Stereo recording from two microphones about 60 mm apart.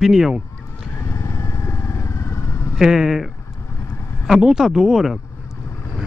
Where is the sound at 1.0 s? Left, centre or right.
Left.